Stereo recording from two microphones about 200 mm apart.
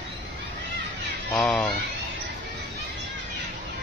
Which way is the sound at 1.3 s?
5° left (ahead or behind).